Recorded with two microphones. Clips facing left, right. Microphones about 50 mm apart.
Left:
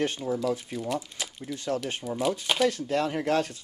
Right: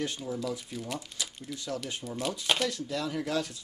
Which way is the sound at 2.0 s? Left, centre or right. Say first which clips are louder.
Left 7 dB; centre.